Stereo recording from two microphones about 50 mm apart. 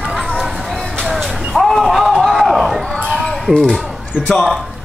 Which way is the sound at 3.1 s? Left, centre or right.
Centre.